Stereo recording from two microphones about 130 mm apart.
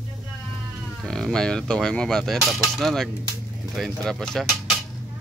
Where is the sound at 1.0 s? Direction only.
5° left (ahead or behind).